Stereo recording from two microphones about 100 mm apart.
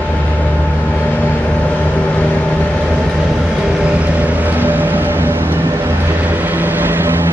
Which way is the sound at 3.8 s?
15° right (ahead or behind).